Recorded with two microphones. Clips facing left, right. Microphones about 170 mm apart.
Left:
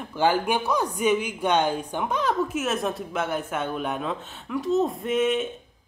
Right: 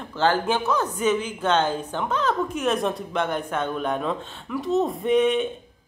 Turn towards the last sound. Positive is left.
turn(degrees=0)  # may be behind; listen again after turning